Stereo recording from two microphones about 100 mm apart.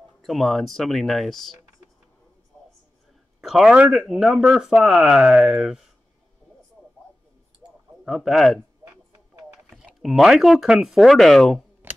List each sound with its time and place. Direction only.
0.2 s speech: centre (ahead or behind)
2.5 s a sound: 20° left (ahead or behind)
3.3 s a sound: 5° right (ahead or behind)
4.1 s speech: 5° right (ahead or behind)
8.0 s speech: 5° right (ahead or behind)
9.7 s speech: 5° right (ahead or behind)